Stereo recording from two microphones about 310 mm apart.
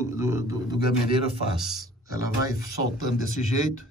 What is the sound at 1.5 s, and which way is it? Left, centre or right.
Speech, centre.